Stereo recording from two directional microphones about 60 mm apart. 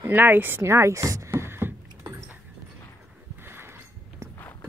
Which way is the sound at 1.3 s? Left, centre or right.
Right.